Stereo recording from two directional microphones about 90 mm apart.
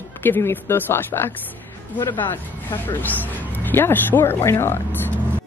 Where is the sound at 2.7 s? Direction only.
20° left (ahead or behind).